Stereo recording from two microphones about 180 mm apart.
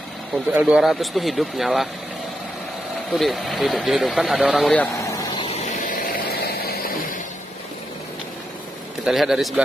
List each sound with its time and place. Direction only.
0.5 s speech: 5° right (ahead or behind)
3.1 s speech: centre (ahead or behind)
4.9 s a sound: 20° left (ahead or behind)
5.6 s vehicle: 50° left (ahead or behind)
9.0 s speech: centre (ahead or behind)